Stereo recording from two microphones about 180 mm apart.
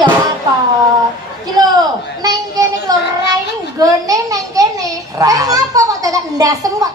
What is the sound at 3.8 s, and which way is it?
A child's voice, 20° right (ahead or behind).